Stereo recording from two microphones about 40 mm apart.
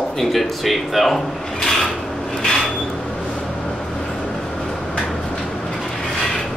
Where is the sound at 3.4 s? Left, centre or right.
Left.